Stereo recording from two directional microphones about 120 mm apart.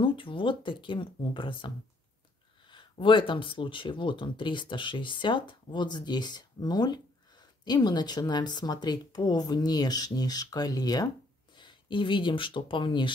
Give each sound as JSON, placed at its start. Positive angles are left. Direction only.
{"t": 0.0, "sound": "speech", "side_deg": 45}